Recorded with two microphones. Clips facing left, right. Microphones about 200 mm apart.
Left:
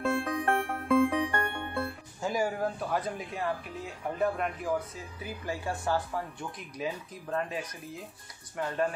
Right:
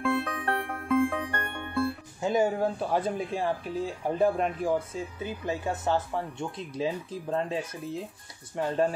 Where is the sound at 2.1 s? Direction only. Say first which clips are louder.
Right 4 dB; 20° right (ahead or behind).